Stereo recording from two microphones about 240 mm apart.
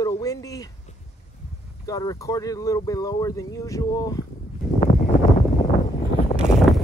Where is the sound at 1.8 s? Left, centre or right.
Centre.